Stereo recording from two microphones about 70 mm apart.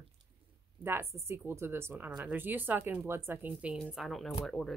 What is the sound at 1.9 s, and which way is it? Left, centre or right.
Speech, right.